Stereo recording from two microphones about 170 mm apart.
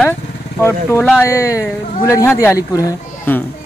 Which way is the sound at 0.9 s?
15° left (ahead or behind).